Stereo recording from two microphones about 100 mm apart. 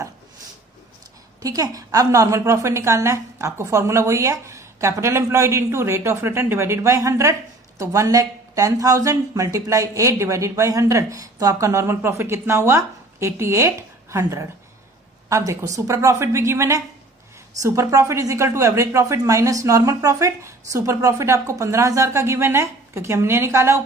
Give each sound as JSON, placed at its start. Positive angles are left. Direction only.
{"t": 1.4, "sound": "a woman's voice", "side_deg": -35}